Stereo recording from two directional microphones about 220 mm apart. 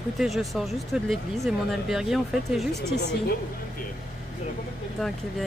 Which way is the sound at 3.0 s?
45° left (ahead or behind).